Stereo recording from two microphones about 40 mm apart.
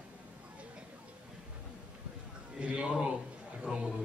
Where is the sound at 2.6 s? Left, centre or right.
Right.